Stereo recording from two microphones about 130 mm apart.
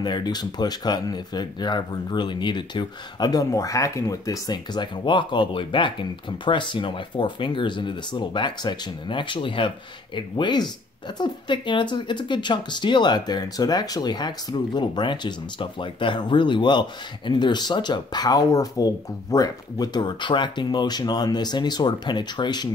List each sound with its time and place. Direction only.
0.0 s speech: 35° left (ahead or behind)